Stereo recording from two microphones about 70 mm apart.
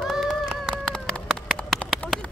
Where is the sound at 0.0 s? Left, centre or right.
Centre.